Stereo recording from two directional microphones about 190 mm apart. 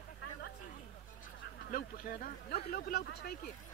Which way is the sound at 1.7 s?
50° left (ahead or behind).